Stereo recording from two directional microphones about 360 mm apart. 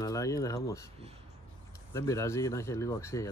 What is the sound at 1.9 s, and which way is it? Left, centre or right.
Speech, centre.